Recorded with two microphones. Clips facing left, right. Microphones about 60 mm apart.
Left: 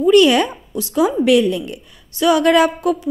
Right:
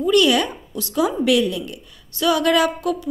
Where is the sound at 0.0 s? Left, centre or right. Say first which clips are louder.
Left 5 dB; left.